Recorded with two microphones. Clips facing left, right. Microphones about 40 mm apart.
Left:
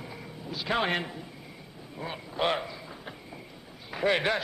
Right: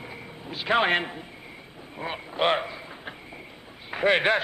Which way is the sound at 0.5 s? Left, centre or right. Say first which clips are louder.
Right 6 dB; right.